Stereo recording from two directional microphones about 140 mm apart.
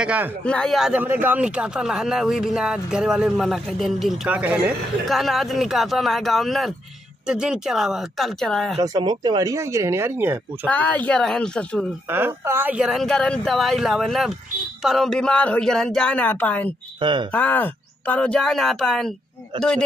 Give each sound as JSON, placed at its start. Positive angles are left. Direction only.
{"t": 0.0, "sound": "speech", "side_deg": -10}
{"t": 0.4, "sound": "speech", "side_deg": 5}
{"t": 5.0, "sound": "speech", "side_deg": 0}
{"t": 8.8, "sound": "speech", "side_deg": -30}
{"t": 10.7, "sound": "speech", "side_deg": 10}
{"t": 12.1, "sound": "speech", "side_deg": -15}
{"t": 17.0, "sound": "speech", "side_deg": -35}
{"t": 17.3, "sound": "speech", "side_deg": 10}